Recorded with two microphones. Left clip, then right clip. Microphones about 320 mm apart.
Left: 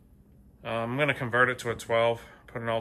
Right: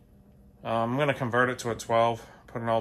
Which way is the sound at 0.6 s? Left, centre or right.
Centre.